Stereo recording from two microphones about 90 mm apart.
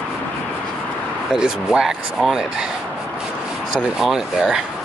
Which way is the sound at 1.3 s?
10° right (ahead or behind).